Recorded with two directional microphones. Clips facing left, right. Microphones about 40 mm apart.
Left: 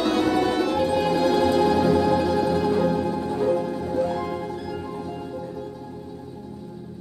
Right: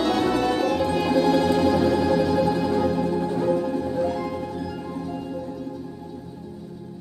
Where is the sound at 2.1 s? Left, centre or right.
Left.